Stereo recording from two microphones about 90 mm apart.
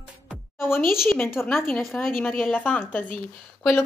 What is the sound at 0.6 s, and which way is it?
Speech, 25° left (ahead or behind).